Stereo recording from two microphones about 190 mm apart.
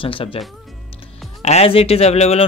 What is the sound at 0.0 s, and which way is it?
Speech, 30° left (ahead or behind).